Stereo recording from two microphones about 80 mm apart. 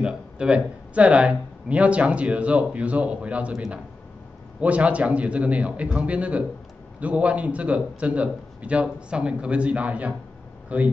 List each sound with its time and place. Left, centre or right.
0.0 s speech: centre